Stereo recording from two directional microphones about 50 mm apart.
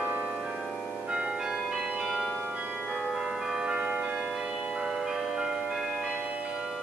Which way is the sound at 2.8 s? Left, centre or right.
Centre.